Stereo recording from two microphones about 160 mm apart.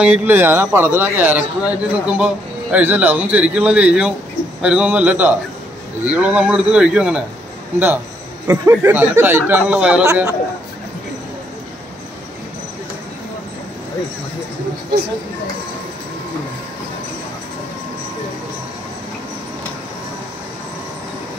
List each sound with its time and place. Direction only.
0.0 s a man's voice: 10° right (ahead or behind)
8.5 s a man's voice: 15° right (ahead or behind)
10.0 s speech: 20° right (ahead or behind)